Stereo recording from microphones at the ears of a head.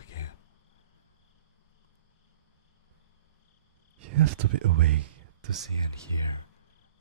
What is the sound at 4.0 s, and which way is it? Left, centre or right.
Speech, right.